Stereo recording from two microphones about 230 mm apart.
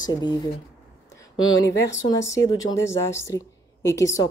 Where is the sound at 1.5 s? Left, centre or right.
Centre.